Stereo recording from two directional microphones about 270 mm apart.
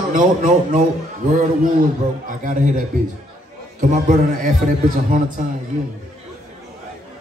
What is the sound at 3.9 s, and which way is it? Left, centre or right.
Speech, right.